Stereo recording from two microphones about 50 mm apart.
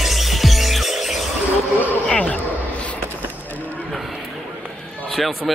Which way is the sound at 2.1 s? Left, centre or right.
Left.